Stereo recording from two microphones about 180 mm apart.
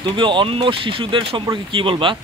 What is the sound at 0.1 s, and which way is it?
Speech, 25° right (ahead or behind).